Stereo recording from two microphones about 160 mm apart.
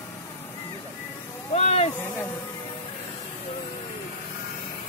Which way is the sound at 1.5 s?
40° left (ahead or behind).